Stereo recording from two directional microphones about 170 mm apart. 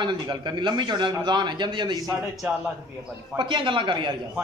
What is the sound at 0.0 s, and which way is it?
A man's voice, 25° right (ahead or behind).